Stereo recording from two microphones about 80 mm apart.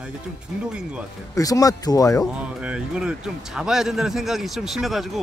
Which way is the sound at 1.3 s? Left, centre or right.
Left.